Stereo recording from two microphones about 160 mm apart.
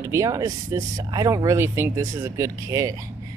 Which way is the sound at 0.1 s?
20° right (ahead or behind).